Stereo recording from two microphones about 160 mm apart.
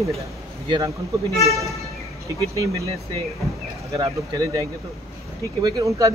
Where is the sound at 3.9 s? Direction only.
25° right (ahead or behind).